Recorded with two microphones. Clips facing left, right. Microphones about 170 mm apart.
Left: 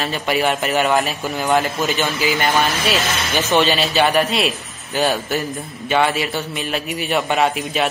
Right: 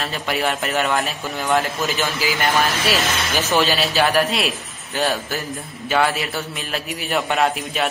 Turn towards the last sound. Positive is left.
turn(degrees=0)  # may be behind; listen again after turning